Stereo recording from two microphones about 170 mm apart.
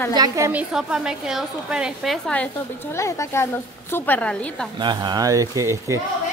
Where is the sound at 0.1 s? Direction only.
25° right (ahead or behind).